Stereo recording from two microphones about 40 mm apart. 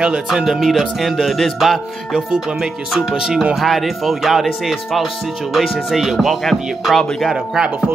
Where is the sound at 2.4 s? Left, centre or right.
Centre.